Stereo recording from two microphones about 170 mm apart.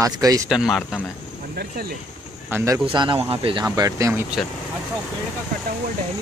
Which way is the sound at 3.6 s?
20° right (ahead or behind).